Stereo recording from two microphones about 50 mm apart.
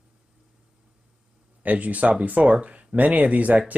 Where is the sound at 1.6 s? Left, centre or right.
Right.